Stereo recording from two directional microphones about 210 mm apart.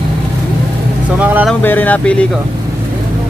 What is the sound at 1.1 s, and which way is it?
Speech, 5° right (ahead or behind).